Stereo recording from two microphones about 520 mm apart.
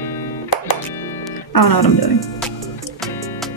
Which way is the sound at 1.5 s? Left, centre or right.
Left.